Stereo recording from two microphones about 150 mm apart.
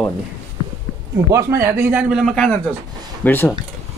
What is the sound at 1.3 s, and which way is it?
Speech, 20° right (ahead or behind).